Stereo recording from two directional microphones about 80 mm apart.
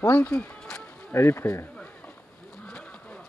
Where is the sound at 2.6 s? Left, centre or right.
Centre.